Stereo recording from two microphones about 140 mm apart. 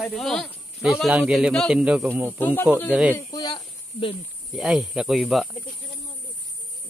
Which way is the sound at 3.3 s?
30° left (ahead or behind).